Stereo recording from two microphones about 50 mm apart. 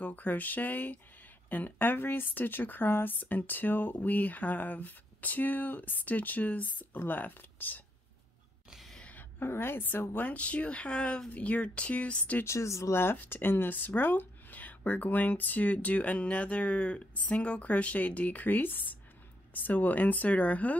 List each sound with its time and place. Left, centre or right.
0.0 s speech: left
9.4 s a woman's voice: left
10.3 s speech: left
12.4 s speech: left
12.9 s speech: left